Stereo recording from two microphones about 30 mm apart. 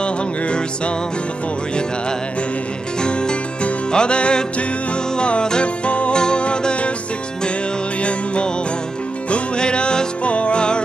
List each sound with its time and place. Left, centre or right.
0.0 s music: left
3.0 s music: left
5.6 s music: left
6.1 s music: left
8.0 s music: left
9.6 s music: left
10.2 s music: left